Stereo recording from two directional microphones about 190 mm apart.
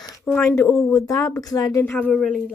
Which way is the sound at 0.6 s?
15° left (ahead or behind).